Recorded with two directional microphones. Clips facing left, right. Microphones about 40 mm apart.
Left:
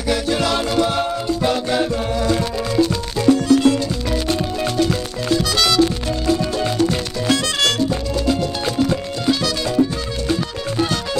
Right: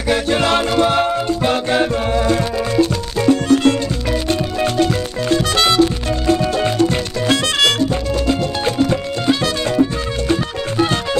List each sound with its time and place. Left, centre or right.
0.1 s music: right
5.3 s music: right